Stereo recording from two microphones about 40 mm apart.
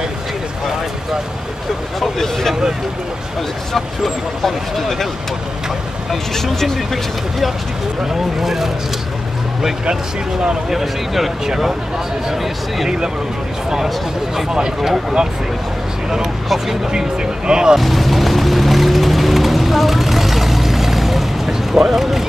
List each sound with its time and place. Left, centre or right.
2.0 s speech: centre
3.7 s speech: centre
6.3 s speech: centre
10.7 s speech: centre
14.8 s speech: centre
16.4 s speech: centre
16.9 s speech: centre
17.7 s vehicle: centre